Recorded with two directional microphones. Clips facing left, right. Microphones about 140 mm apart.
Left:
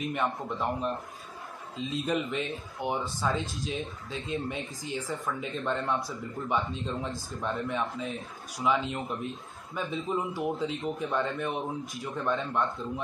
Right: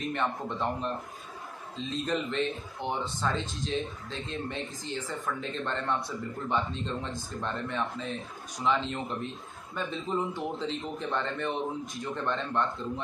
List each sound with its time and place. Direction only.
0.0 s speech: 5° left (ahead or behind)
1.8 s speech: 5° left (ahead or behind)